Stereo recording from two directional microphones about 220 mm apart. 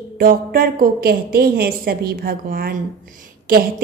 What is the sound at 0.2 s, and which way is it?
A woman's voice, 40° right (ahead or behind).